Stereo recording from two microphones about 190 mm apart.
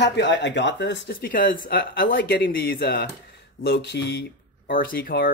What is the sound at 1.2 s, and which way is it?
Speech, 45° left (ahead or behind).